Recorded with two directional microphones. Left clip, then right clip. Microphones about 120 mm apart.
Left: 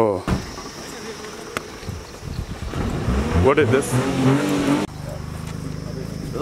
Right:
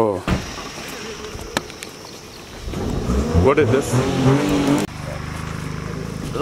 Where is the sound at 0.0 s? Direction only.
10° left (ahead or behind).